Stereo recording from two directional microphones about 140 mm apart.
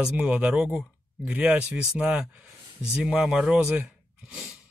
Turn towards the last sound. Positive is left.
turn(degrees=-10)  # may be behind; listen again after turning